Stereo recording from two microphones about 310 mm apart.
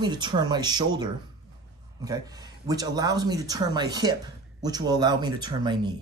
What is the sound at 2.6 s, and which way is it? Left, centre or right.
Speech, centre.